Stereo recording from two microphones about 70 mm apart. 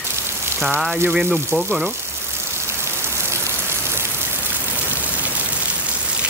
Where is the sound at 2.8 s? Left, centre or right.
Right.